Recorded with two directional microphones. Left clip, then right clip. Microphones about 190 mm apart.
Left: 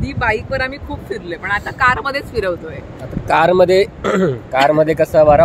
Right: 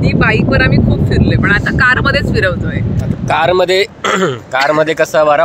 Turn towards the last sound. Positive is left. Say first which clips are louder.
# even
turn(degrees=0)  # may be behind; listen again after turning